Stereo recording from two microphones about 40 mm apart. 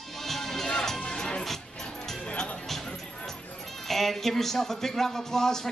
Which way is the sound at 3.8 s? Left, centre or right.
Centre.